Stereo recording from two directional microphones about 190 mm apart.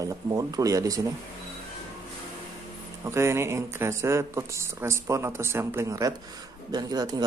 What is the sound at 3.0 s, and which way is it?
Speech, 15° right (ahead or behind).